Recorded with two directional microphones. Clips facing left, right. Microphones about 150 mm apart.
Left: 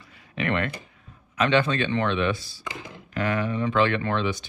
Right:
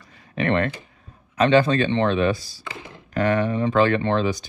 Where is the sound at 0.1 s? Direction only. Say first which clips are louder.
Right 5 dB; 40° right (ahead or behind).